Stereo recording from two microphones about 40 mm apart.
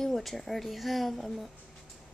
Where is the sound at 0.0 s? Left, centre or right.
Centre.